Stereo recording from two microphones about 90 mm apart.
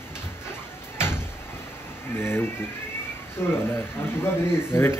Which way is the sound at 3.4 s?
30° left (ahead or behind).